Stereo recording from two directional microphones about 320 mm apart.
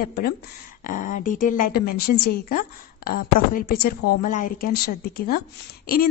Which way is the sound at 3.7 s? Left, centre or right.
Left.